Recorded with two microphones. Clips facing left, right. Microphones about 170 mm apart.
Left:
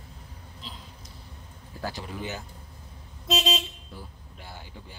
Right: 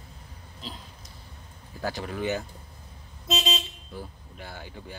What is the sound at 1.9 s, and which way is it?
Speech, 55° right (ahead or behind).